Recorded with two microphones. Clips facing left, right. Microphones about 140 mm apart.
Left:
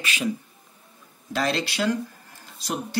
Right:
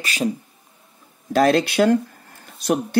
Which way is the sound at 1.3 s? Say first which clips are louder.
Right 9 dB; 50° right (ahead or behind).